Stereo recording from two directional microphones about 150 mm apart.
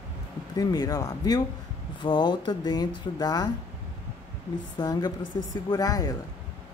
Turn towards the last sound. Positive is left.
turn(degrees=25)  # may be behind; listen again after turning